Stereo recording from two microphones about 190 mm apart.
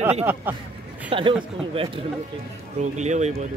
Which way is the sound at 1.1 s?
25° right (ahead or behind).